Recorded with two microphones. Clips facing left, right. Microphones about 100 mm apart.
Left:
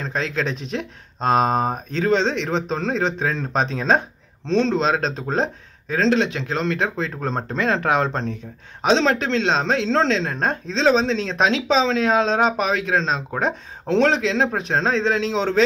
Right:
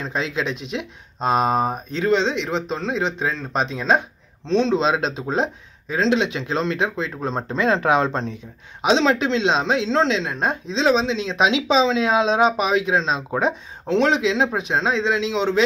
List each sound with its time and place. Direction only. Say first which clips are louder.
0.0 s speech: even; 15° right (ahead or behind)
4.7 s speech: even; 15° right (ahead or behind)
7.0 s speech: even; 10° right (ahead or behind)